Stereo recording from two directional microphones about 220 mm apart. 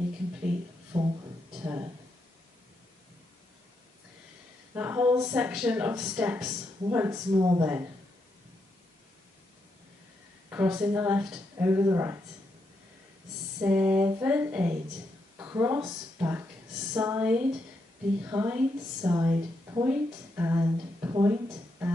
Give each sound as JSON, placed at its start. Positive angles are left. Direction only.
{"t": 0.9, "sound": "a sound", "side_deg": -20}
{"t": 4.7, "sound": "a woman's voice", "side_deg": -10}
{"t": 10.5, "sound": "a woman's voice", "side_deg": -10}
{"t": 13.6, "sound": "a woman's voice", "side_deg": -5}